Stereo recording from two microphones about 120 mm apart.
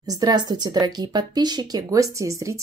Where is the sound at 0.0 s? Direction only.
35° right (ahead or behind).